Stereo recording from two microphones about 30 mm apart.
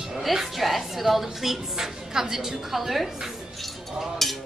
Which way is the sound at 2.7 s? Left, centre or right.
Centre.